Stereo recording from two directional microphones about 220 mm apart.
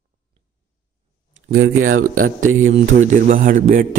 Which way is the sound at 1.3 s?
65° right (ahead or behind).